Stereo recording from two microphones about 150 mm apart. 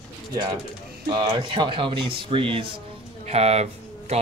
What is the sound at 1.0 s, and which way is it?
Speech, 30° right (ahead or behind).